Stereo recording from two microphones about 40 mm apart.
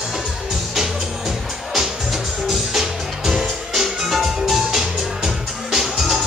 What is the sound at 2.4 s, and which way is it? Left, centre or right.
Music, centre.